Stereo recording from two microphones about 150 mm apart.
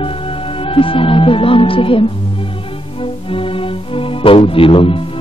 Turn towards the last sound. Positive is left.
turn(degrees=35)  # may be behind; listen again after turning